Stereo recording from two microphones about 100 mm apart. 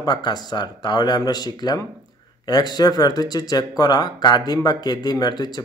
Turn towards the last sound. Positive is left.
turn(degrees=45)  # may be behind; listen again after turning